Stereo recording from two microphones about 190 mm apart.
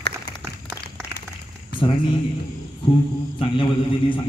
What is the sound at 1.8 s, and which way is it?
Speech, 25° left (ahead or behind).